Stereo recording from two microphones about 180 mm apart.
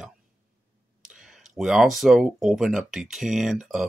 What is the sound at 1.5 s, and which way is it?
Speech, centre (ahead or behind).